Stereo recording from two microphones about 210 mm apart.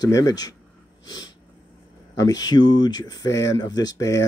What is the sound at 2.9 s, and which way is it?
Speech, 20° left (ahead or behind).